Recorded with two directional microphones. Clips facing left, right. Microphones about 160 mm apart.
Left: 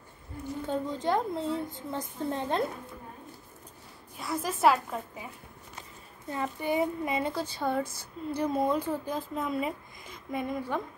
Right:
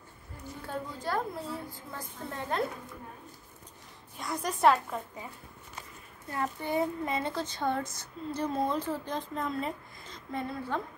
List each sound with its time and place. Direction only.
0.7 s a woman's voice: 20° left (ahead or behind)
4.2 s a woman's voice: 5° left (ahead or behind)
6.3 s speech: 15° left (ahead or behind)